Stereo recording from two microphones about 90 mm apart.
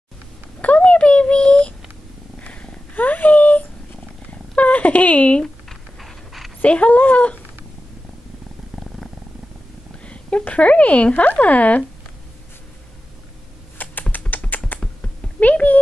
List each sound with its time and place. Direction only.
0.6 s a sound: 15° left (ahead or behind)
2.3 s purr: 15° left (ahead or behind)
4.3 s cat: 15° left (ahead or behind)
5.7 s dog: centre (ahead or behind)
6.6 s speech: 15° left (ahead or behind)
10.0 s speech: 15° left (ahead or behind)
13.7 s typing: 20° left (ahead or behind)
15.4 s speech: 15° left (ahead or behind)